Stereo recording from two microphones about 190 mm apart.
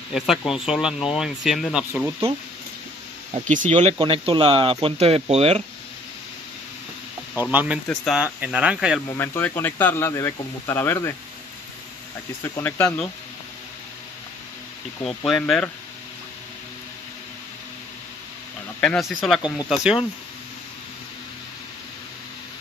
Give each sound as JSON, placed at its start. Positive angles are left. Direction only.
{"t": 0.1, "sound": "speech", "side_deg": 0}
{"t": 4.0, "sound": "speech", "side_deg": -25}
{"t": 7.5, "sound": "speech", "side_deg": -5}
{"t": 9.1, "sound": "speech", "side_deg": 10}
{"t": 12.5, "sound": "speech", "side_deg": 15}
{"t": 15.0, "sound": "speech", "side_deg": 5}
{"t": 18.8, "sound": "speech", "side_deg": 0}